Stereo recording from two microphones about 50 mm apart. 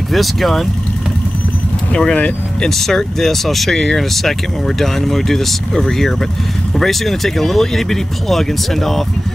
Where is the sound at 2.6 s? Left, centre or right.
Centre.